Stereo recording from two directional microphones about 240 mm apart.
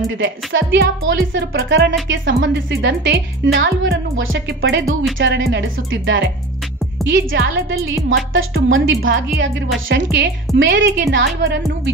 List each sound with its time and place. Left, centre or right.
0.2 s speech: right